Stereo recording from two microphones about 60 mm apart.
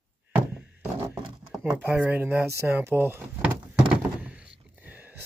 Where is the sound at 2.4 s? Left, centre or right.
Right.